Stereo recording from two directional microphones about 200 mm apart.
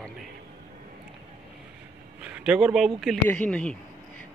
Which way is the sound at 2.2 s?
5° right (ahead or behind).